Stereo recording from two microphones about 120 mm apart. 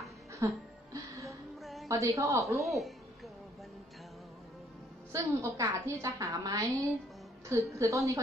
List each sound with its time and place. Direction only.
0.4 s a woman's voice: 25° right (ahead or behind)
0.9 s music: 25° right (ahead or behind)
1.6 s a sound: centre (ahead or behind)
1.9 s a woman's voice: 25° right (ahead or behind)
2.4 s speech: centre (ahead or behind)
5.1 s a woman's voice: 25° right (ahead or behind)